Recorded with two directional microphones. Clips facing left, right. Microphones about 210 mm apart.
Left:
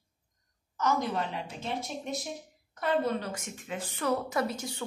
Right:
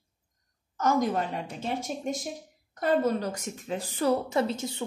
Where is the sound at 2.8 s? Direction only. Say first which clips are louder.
Right 4 dB; 40° right (ahead or behind).